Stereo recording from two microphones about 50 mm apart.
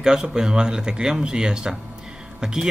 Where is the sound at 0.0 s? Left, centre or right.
Centre.